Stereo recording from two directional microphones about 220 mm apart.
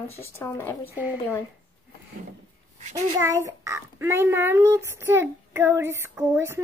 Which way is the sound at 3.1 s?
15° right (ahead or behind).